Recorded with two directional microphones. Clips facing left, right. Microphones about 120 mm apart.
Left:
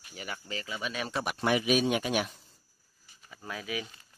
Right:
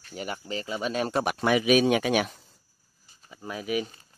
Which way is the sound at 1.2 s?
80° right.